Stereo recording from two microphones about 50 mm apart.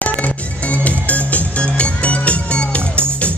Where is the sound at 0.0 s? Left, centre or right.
Left.